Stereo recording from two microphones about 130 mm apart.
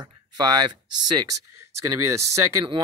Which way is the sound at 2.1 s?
25° right (ahead or behind).